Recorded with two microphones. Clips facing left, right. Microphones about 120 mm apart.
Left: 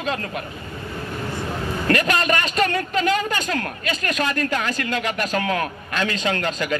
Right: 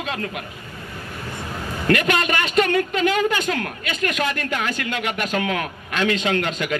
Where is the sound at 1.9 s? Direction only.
40° left (ahead or behind).